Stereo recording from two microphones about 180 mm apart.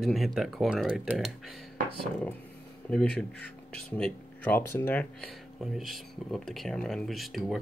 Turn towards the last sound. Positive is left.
turn(degrees=0)  # may be behind; listen again after turning